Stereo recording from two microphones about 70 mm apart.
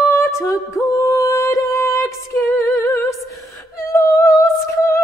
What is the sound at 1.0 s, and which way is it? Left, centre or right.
Music, left.